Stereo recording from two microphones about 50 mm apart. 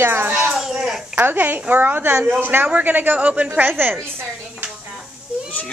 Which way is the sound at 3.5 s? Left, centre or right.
Right.